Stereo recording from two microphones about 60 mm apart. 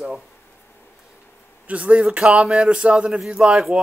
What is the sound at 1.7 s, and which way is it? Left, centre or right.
A man's voice, right.